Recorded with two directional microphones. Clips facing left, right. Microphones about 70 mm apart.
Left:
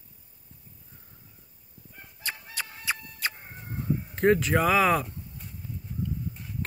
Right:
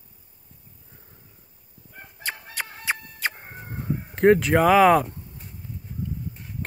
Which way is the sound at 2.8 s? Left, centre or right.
Right.